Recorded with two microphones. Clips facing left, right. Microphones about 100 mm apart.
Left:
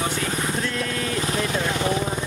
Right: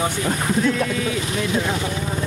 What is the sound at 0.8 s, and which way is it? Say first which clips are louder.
Speech: right 4 dB; 5° right (ahead or behind).